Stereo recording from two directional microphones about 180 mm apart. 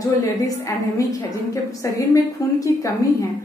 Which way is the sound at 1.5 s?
20° left (ahead or behind).